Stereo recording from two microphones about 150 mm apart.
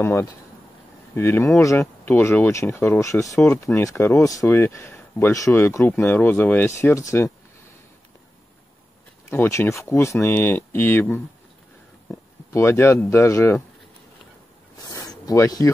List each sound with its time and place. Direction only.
0.0 s speech: 15° left (ahead or behind)
9.3 s speech: 15° left (ahead or behind)
14.9 s a sound: 25° left (ahead or behind)